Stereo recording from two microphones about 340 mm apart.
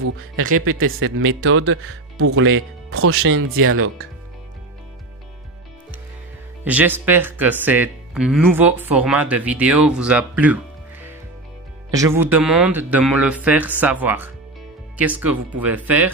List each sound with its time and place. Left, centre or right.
0.0 s speech: right
6.6 s speech: centre